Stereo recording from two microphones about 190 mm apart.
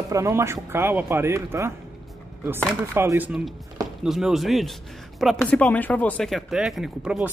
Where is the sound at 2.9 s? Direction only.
15° right (ahead or behind).